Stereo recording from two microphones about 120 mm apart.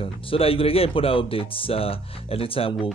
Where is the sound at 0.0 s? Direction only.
50° left (ahead or behind).